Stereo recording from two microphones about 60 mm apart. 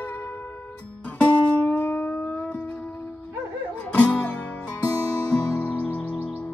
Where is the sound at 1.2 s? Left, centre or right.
Centre.